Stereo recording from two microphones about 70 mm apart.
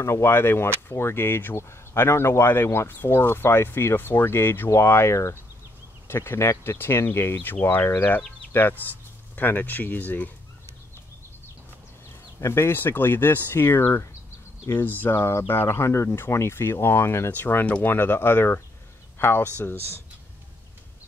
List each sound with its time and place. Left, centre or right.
0.0 s speech: left
12.4 s speech: left
17.3 s speech: left